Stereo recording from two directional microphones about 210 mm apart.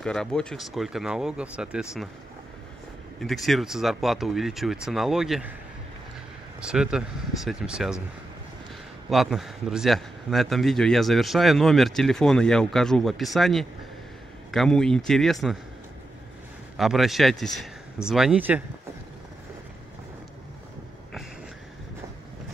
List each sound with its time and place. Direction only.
0.0 s speech: 5° left (ahead or behind)
3.2 s speech: centre (ahead or behind)
6.6 s speech: 5° right (ahead or behind)
9.1 s speech: centre (ahead or behind)
16.7 s speech: centre (ahead or behind)